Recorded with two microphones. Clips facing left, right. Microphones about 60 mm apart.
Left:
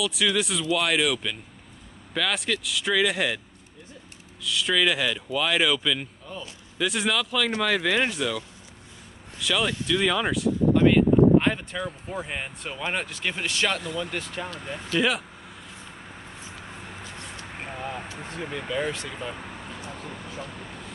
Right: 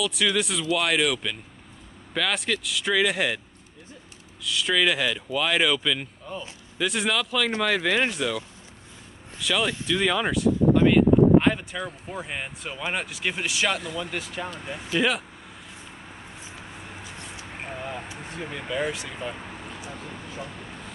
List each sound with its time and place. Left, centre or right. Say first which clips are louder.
0.0 s speech: even; centre
4.4 s speech: even; centre
14.5 s speech: even; centre
15.0 s speech: even; centre
18.3 s speech: left 1 dB; centre